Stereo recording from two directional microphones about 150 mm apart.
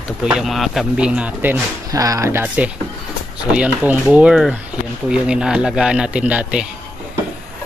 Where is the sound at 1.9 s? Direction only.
20° right (ahead or behind).